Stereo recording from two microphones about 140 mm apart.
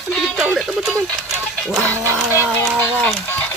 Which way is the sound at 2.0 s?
20° right (ahead or behind).